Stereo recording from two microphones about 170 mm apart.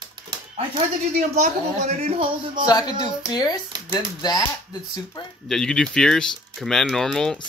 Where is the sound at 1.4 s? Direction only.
40° right (ahead or behind).